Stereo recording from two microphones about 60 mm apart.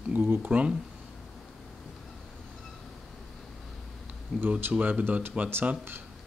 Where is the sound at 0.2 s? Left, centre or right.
Right.